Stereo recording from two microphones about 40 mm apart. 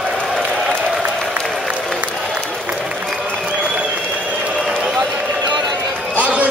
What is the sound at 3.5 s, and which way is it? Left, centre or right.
Applause, right.